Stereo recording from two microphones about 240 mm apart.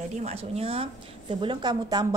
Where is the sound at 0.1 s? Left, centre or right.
Right.